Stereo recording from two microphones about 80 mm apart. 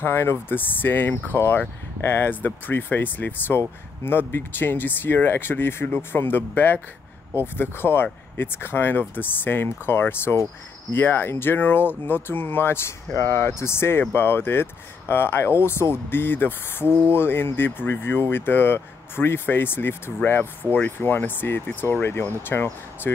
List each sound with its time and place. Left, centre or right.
0.0 s speech: left